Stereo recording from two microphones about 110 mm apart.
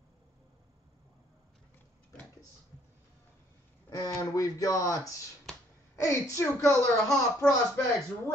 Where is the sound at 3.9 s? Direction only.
35° left (ahead or behind).